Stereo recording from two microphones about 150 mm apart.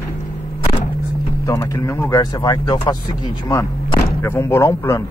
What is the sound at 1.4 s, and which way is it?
Speech, 20° left (ahead or behind).